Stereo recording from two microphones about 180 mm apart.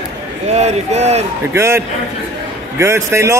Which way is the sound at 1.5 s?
15° right (ahead or behind).